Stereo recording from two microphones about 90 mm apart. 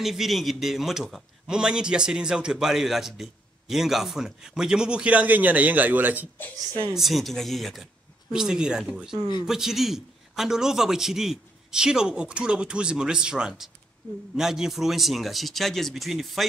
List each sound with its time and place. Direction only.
0.0 s a man's voice: 5° right (ahead or behind); by 6.2 s 20° right (ahead or behind)
6.9 s a man's voice: centre (ahead or behind)